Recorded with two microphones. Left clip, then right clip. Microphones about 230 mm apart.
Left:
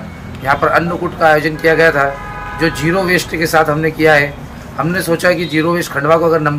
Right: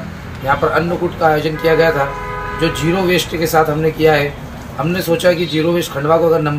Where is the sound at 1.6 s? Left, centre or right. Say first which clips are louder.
Right 1 dB; centre.